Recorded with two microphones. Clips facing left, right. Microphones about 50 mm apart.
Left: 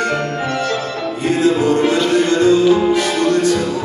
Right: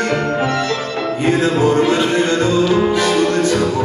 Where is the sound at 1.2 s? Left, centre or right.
Right.